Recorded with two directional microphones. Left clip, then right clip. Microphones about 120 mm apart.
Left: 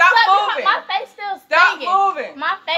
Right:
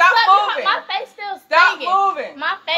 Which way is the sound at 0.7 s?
10° right (ahead or behind).